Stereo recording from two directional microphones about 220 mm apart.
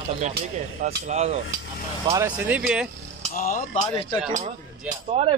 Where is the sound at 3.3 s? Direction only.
40° left (ahead or behind).